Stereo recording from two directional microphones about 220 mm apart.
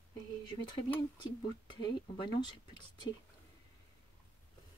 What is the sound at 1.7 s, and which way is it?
Speech, 20° left (ahead or behind).